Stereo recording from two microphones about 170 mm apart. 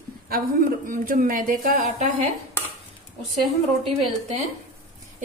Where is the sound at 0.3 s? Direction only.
55° right (ahead or behind).